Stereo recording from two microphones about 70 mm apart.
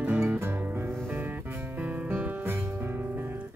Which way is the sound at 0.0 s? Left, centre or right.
Right.